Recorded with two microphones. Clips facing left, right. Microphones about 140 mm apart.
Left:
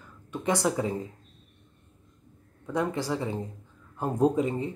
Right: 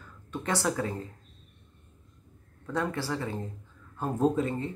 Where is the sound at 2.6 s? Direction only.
15° left (ahead or behind).